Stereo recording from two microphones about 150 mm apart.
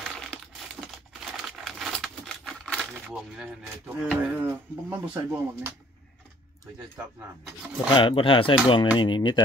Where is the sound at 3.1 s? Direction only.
5° right (ahead or behind).